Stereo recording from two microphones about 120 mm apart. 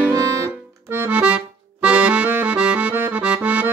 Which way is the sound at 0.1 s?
30° right (ahead or behind).